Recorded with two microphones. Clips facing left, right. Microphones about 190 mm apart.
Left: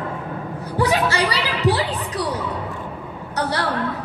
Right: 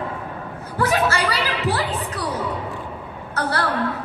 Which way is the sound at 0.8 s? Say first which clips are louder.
Left 1 dB; 15° left (ahead or behind).